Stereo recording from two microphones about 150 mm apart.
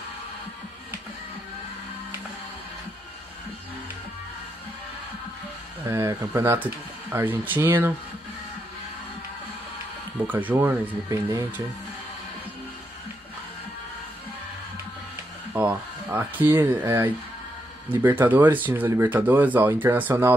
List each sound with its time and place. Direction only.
5.9 s speech: 20° right (ahead or behind)
10.2 s speech: 10° right (ahead or behind)
16.1 s speech: 10° right (ahead or behind)